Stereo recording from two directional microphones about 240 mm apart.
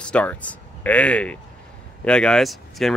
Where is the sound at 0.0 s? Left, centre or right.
Centre.